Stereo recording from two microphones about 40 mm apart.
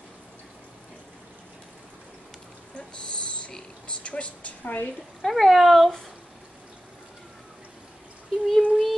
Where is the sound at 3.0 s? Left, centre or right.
Left.